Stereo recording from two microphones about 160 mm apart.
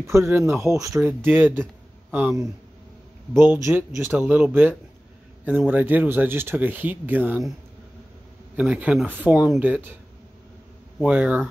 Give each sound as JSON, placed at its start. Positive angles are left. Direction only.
{"t": 0.0, "sound": "speech", "side_deg": -15}
{"t": 8.5, "sound": "speech", "side_deg": -10}
{"t": 11.0, "sound": "speech", "side_deg": -10}